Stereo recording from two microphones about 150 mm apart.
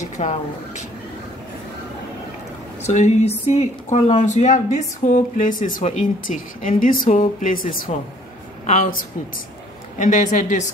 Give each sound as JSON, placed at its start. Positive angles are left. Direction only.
{"t": 0.2, "sound": "speech", "side_deg": 50}
{"t": 2.8, "sound": "a woman's voice", "side_deg": 50}